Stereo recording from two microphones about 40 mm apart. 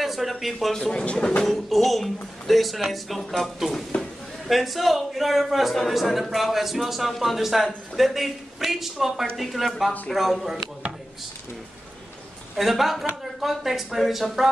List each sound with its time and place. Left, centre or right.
0.0 s speech: centre
0.7 s a man's voice: centre
3.9 s a sound: left
4.5 s a man's voice: centre
12.5 s a man's voice: centre